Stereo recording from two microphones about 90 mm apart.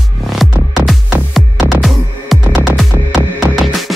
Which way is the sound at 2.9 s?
25° right (ahead or behind).